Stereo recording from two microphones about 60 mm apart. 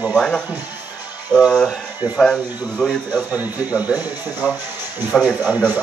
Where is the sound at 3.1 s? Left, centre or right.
Centre.